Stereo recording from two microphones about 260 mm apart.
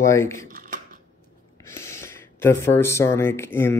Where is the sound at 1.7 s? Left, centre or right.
Centre.